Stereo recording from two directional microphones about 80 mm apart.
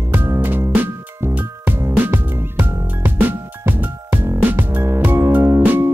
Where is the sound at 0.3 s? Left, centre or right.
Right.